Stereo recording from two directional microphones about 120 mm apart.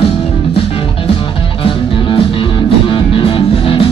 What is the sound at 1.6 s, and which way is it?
Music, 45° left (ahead or behind).